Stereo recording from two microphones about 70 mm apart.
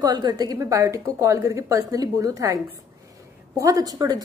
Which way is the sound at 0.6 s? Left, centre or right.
Right.